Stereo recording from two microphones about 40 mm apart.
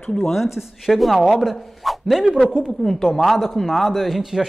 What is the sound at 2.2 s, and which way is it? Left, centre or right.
Speech, left.